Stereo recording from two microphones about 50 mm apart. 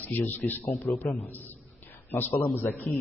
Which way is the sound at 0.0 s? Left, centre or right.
Left.